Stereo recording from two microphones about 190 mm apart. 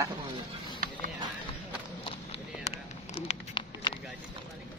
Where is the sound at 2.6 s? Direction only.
35° left (ahead or behind).